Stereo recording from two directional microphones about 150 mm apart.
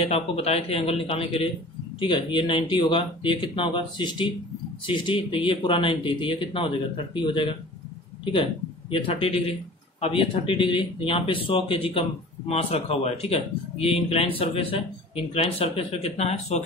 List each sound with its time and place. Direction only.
0.0 s a man's voice: 40° left (ahead or behind)
8.9 s a man's voice: 35° left (ahead or behind)